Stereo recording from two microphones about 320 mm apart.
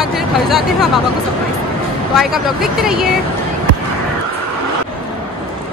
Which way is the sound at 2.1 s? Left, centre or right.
Centre.